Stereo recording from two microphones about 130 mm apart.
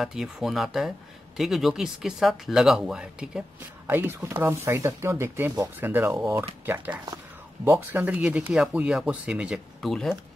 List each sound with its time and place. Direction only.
0.0 s speech: 5° right (ahead or behind)